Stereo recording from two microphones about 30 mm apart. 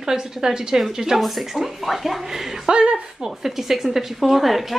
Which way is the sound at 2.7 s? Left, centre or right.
Right.